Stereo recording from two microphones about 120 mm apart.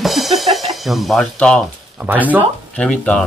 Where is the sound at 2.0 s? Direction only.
10° right (ahead or behind).